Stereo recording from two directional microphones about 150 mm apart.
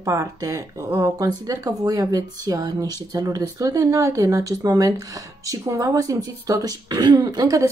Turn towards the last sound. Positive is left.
turn(degrees=-20)  # may be behind; listen again after turning